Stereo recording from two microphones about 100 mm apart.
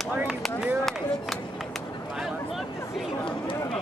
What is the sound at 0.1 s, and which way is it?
Speech, 15° right (ahead or behind).